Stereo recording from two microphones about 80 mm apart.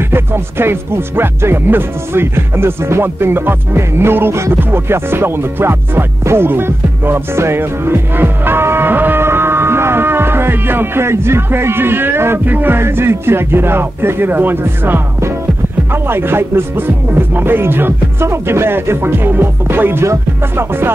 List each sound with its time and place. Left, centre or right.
0.1 s speech: right